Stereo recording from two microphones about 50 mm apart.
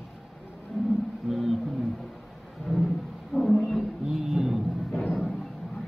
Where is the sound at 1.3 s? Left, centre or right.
Centre.